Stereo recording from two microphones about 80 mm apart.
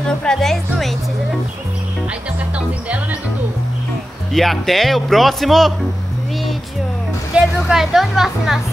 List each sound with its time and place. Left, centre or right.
0.2 s speech: centre
4.3 s speech: centre
7.3 s speech: centre